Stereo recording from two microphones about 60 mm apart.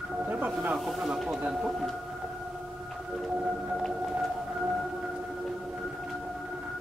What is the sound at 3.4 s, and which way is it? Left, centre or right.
Whale vocalization, centre.